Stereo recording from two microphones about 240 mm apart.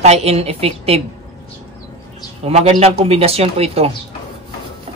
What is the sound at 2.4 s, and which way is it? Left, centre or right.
Speech, right.